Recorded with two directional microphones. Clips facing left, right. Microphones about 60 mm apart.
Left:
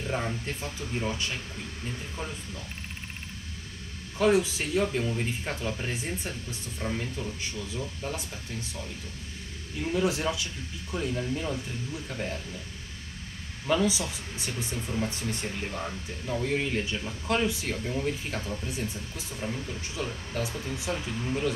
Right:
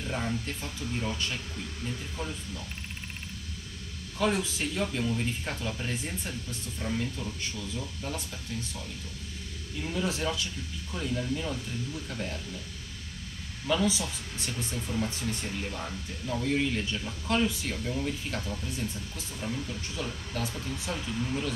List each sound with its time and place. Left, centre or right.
0.0 s speech: centre
2.2 s speech: left
4.2 s speech: centre
9.8 s speech: centre
13.8 s speech: centre